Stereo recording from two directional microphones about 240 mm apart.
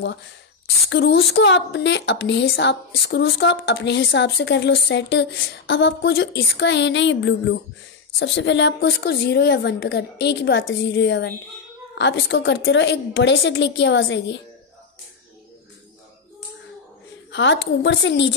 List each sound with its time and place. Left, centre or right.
0.8 s a woman's voice: left
17.3 s a woman's voice: left